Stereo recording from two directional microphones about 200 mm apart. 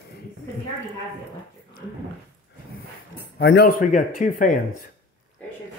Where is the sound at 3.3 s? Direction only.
55° left (ahead or behind).